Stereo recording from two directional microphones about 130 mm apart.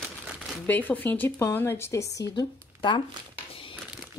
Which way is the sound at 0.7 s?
15° left (ahead or behind).